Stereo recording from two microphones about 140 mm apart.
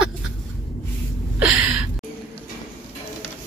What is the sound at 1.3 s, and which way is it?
Gasp, 10° right (ahead or behind).